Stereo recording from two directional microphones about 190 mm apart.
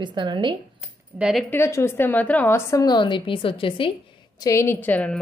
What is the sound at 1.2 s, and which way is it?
Speech, 5° right (ahead or behind).